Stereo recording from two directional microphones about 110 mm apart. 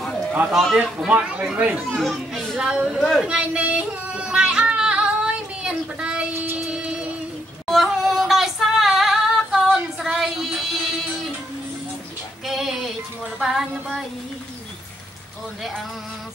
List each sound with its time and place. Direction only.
0.5 s a child's voice: centre (ahead or behind)
1.9 s a child's voice: centre (ahead or behind)
3.0 s a child's voice: 5° left (ahead or behind)
3.3 s yodeling: 10° right (ahead or behind)
6.3 s music: 15° right (ahead or behind)
7.6 s female singing: centre (ahead or behind)
12.4 s music: centre (ahead or behind)
13.4 s a child's voice: centre (ahead or behind)